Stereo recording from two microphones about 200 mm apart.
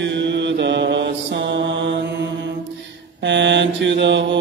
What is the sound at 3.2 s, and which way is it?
Mantra, 65° right (ahead or behind).